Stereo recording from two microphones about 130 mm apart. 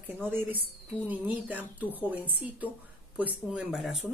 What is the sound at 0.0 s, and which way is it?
Speech, 15° right (ahead or behind).